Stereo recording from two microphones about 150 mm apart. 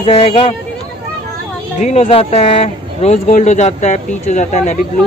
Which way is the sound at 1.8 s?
50° left (ahead or behind).